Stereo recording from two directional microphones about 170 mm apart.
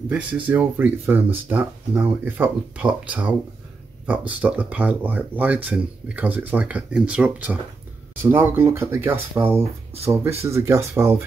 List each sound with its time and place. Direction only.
0.1 s speech: 10° right (ahead or behind)